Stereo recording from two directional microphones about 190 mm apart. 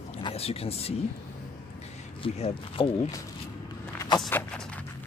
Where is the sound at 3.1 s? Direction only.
15° left (ahead or behind).